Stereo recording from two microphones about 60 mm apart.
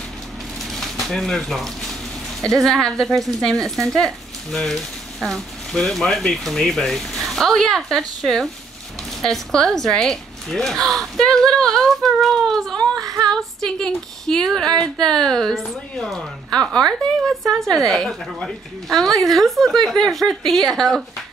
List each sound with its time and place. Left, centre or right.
0.7 s a sound: centre
2.4 s a woman's voice: centre
12.9 s female singing: right
13.3 s a woman's voice: centre